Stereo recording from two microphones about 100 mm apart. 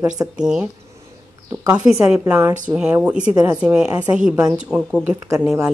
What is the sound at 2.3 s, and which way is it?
Speech, 20° right (ahead or behind).